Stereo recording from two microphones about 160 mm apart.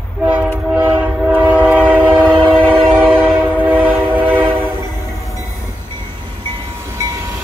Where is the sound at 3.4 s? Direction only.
10° right (ahead or behind).